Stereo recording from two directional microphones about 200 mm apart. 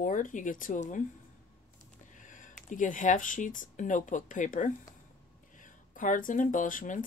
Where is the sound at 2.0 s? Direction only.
40° left (ahead or behind).